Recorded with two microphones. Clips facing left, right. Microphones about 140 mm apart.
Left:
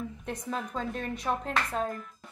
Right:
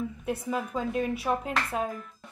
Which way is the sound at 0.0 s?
5° right (ahead or behind).